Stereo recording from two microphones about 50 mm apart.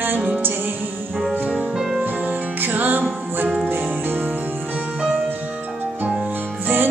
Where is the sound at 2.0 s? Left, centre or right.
Right.